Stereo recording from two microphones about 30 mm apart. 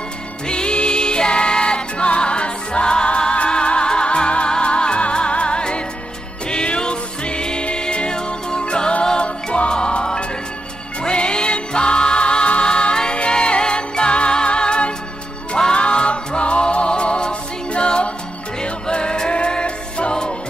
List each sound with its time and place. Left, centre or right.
0.5 s music: left